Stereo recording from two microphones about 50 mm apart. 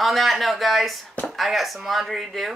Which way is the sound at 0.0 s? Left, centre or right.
Centre.